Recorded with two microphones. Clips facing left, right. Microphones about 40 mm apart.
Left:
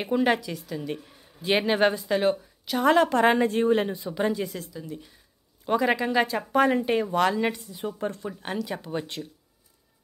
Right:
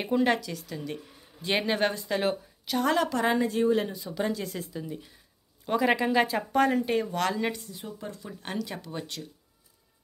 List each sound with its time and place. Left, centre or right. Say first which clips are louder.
0.0 s a woman's voice: left 2 dB; centre
2.9 s a woman's voice: left 7 dB; left
4.1 s speech: left 3 dB; centre
4.6 s speech: right 1 dB; centre
4.9 s a woman's voice: left 1 dB; centre
7.8 s a woman's voice: left 13 dB; left
8.3 s a woman's voice: left 4 dB; centre
8.8 s speech: left 5 dB; left